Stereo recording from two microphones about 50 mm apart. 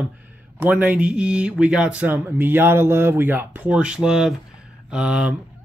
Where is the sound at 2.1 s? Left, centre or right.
Right.